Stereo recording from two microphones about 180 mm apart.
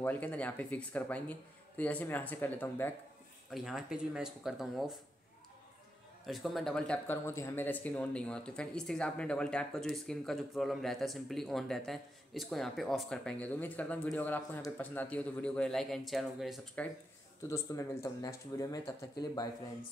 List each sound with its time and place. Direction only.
0.0 s speech: 10° left (ahead or behind)
3.4 s speech: centre (ahead or behind)
6.2 s speech: centre (ahead or behind)
17.4 s speech: 15° left (ahead or behind)